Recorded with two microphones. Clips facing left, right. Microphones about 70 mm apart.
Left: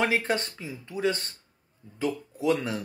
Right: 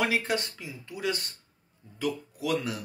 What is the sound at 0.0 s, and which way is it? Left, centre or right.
Speech, left.